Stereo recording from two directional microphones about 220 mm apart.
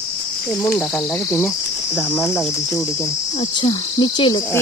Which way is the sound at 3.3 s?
20° left (ahead or behind).